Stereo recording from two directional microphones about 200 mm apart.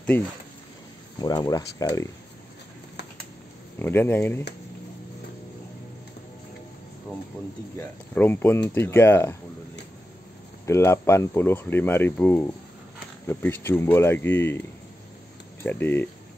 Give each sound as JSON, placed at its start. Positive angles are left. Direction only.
{"t": 1.2, "sound": "speech", "side_deg": 20}
{"t": 3.8, "sound": "speech", "side_deg": 10}
{"t": 7.7, "sound": "speech", "side_deg": 10}
{"t": 10.6, "sound": "speech", "side_deg": 15}
{"t": 15.6, "sound": "speech", "side_deg": 10}